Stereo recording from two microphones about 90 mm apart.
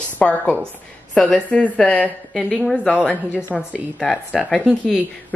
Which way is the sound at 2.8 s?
10° right (ahead or behind).